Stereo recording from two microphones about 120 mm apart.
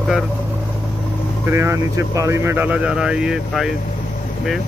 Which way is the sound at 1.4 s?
20° right (ahead or behind).